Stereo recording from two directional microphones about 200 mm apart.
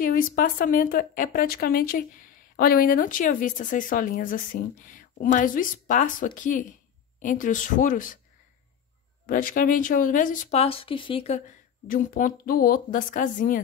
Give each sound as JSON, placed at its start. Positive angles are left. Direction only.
{"t": 0.0, "sound": "speech", "side_deg": 45}
{"t": 9.2, "sound": "speech", "side_deg": 45}
{"t": 11.9, "sound": "speech", "side_deg": 45}